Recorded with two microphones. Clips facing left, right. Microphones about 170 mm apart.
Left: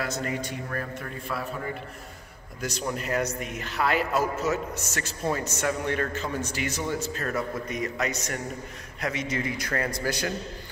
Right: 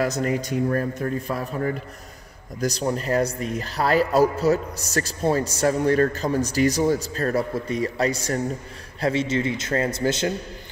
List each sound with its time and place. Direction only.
0.0 s a man's voice: 40° right (ahead or behind)
2.6 s a man's voice: 35° right (ahead or behind)